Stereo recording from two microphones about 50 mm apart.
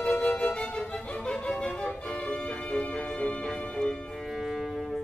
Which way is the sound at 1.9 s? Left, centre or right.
Left.